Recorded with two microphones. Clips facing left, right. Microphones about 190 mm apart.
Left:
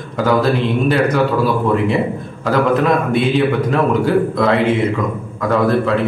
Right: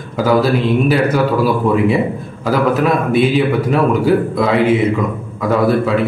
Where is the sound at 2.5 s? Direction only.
5° right (ahead or behind).